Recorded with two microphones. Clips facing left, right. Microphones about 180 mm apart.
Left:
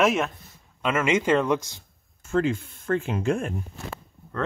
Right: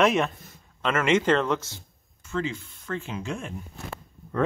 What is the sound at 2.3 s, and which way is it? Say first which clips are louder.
Speech: left 6 dB; 50° left (ahead or behind).